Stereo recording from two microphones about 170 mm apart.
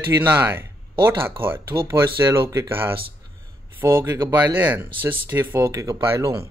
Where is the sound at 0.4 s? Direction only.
15° right (ahead or behind).